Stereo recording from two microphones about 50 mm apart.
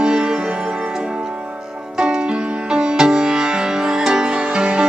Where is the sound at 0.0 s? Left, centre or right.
Centre.